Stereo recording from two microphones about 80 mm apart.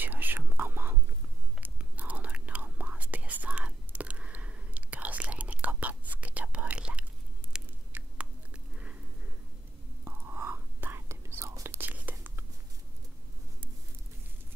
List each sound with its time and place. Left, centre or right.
0.0 s whispering: right
7.5 s biting: centre
7.9 s chewing: right
10.0 s whispering: right